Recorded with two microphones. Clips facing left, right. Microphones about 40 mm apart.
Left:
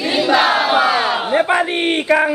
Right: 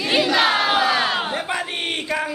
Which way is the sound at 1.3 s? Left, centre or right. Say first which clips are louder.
Left 10 dB; left.